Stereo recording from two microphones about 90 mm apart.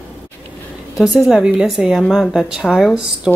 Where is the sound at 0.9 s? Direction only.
Centre (ahead or behind).